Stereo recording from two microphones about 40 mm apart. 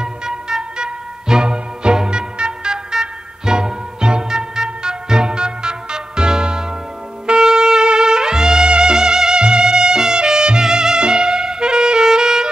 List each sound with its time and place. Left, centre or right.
0.0 s music: centre